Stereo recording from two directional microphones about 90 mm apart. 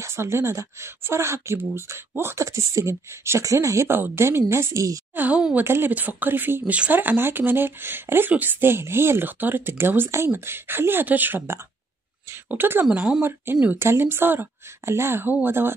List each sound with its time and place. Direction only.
0.0 s speech: 30° right (ahead or behind)
5.1 s speech: 20° right (ahead or behind)
12.9 s speech: 10° right (ahead or behind)
13.2 s speech: 20° right (ahead or behind)